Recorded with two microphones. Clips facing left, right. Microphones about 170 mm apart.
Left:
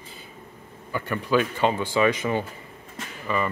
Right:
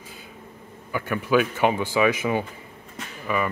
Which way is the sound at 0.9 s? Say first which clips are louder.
Right 2 dB; 10° right (ahead or behind).